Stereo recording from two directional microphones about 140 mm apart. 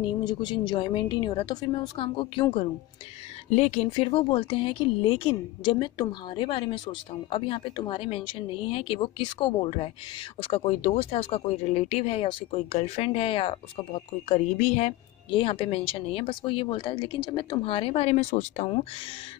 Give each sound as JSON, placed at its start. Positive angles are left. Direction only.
{"t": 0.0, "sound": "speech", "side_deg": 30}
{"t": 3.4, "sound": "speech", "side_deg": 55}